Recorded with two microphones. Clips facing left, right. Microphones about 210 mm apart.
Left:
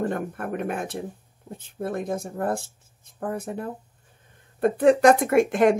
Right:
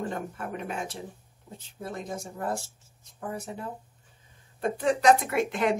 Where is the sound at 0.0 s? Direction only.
55° left (ahead or behind).